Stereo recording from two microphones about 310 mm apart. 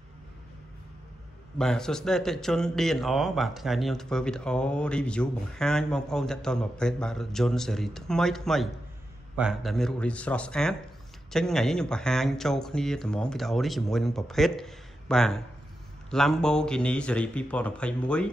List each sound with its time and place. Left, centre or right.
1.6 s a man's voice: centre